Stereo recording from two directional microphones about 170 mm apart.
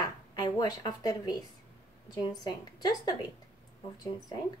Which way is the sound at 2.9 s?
25° left (ahead or behind).